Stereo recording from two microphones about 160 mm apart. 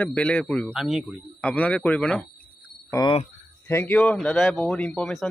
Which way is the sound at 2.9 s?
25° left (ahead or behind).